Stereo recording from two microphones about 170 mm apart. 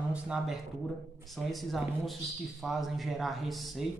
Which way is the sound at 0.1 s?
5° right (ahead or behind).